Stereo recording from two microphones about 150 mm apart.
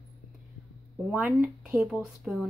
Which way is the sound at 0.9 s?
5° right (ahead or behind).